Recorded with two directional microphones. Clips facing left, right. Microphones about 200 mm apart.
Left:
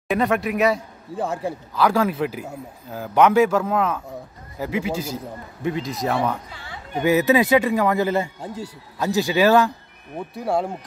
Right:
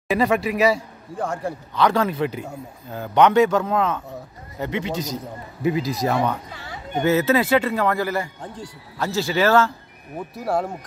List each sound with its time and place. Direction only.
0.1 s a man's voice: centre (ahead or behind)
5.6 s a man's voice: 5° right (ahead or behind)
6.5 s a sound: 40° right (ahead or behind)
7.1 s a man's voice: 15° left (ahead or behind)
8.4 s a man's voice: 10° left (ahead or behind)
10.1 s a man's voice: centre (ahead or behind)